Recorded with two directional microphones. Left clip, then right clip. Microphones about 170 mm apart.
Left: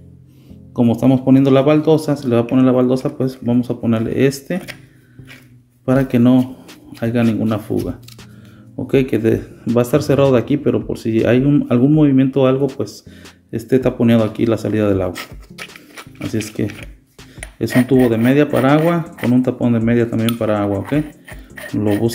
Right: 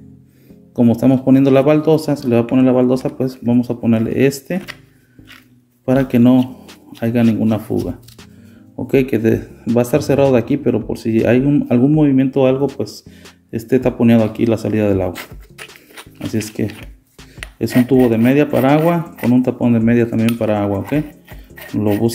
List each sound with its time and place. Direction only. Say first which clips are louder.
0.7 s speech: right 1 dB; centre (ahead or behind)
5.9 s speech: right 1 dB; centre (ahead or behind)
15.6 s music: left 2 dB; 25° left (ahead or behind)
17.4 s music: right 3 dB; 5° left (ahead or behind)
17.8 s speech: even; 15° right (ahead or behind)
18.1 s speech: even; centre (ahead or behind)